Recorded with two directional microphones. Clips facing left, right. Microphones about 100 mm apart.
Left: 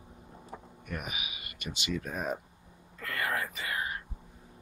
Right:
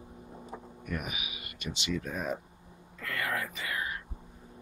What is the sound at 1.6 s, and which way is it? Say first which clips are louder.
Speech: right 1 dB; 45° left (ahead or behind).